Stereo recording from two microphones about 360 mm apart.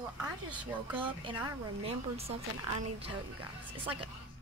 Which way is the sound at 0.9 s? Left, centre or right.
Centre.